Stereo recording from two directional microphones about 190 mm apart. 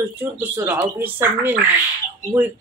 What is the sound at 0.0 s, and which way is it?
Speech, 10° right (ahead or behind).